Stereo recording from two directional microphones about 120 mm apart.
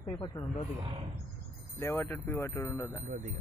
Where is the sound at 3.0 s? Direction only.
90° right.